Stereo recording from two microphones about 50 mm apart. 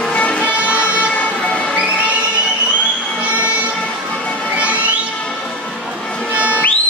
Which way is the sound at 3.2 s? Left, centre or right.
Right.